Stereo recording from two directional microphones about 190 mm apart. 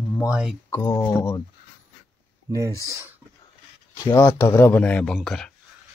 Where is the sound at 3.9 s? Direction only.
20° left (ahead or behind); by 5.5 s centre (ahead or behind).